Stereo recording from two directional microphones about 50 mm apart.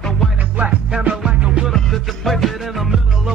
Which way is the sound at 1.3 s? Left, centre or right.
Right.